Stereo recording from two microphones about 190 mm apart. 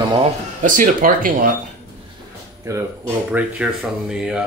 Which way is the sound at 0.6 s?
45° right (ahead or behind).